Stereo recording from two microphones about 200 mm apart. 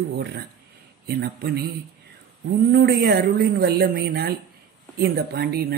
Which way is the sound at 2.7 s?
55° right (ahead or behind).